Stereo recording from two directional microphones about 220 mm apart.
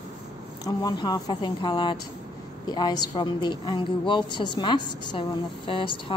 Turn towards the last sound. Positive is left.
turn(degrees=25)  # may be behind; listen again after turning